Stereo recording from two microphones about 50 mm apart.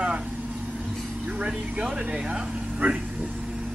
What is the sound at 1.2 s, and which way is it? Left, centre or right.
Music, right.